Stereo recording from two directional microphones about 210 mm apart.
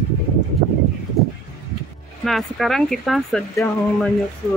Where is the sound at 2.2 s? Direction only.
Centre (ahead or behind).